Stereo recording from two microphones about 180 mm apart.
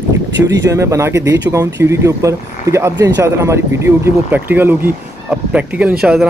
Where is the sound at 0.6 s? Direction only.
15° right (ahead or behind).